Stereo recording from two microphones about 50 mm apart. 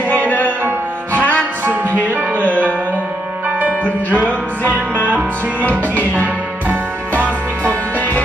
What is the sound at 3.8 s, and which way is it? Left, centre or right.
Music, left.